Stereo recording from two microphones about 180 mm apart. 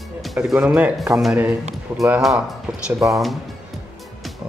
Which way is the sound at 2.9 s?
15° right (ahead or behind).